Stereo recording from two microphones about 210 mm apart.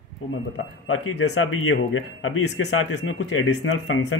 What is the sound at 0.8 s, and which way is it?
Speech, 85° left.